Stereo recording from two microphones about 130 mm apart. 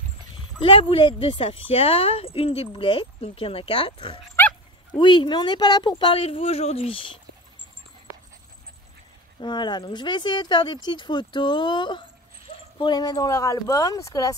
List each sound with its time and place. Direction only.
0.6 s speech: 45° left (ahead or behind)
9.4 s speech: 35° left (ahead or behind)